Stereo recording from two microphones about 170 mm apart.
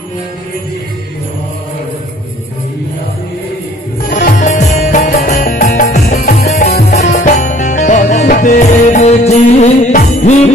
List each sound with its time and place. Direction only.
4.1 s music: 50° left (ahead or behind)